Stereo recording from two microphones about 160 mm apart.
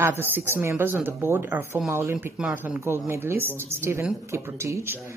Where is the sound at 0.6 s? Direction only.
15° right (ahead or behind).